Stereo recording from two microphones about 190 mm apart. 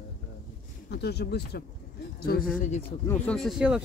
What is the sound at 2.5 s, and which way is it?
Speech, 40° left (ahead or behind).